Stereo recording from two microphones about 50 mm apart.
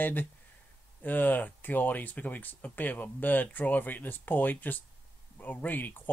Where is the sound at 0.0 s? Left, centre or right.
Left.